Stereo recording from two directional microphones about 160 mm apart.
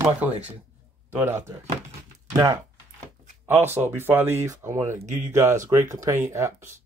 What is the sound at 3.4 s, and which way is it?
Speech, 15° right (ahead or behind).